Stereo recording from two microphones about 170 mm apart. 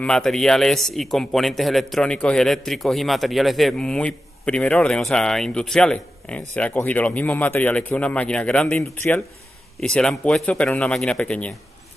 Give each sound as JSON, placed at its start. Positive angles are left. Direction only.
{"t": 0.0, "sound": "a man's voice", "side_deg": 5}